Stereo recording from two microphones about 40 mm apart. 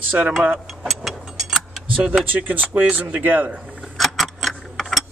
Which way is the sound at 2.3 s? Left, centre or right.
Right.